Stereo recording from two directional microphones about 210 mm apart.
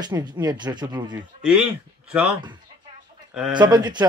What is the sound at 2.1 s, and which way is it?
Speech, 5° right (ahead or behind).